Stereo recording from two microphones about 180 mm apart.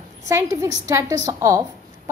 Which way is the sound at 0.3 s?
15° right (ahead or behind).